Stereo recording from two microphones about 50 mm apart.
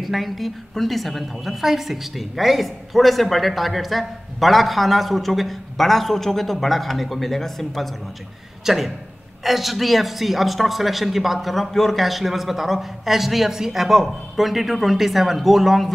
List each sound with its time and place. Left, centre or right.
0.0 s a woman's voice: centre
8.6 s a woman's voice: centre